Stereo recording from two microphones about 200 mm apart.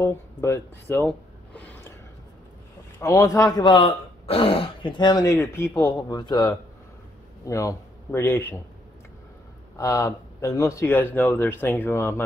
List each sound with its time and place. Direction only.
0.0 s a sound: 15° left (ahead or behind)
3.0 s speech: 15° left (ahead or behind)
9.8 s speech: 15° left (ahead or behind)